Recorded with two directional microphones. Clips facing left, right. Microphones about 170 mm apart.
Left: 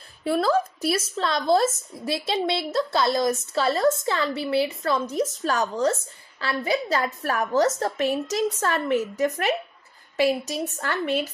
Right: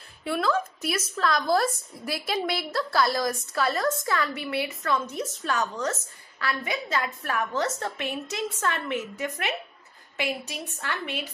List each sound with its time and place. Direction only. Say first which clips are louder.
0.2 s a woman's voice: left 4 dB; 40° left (ahead or behind)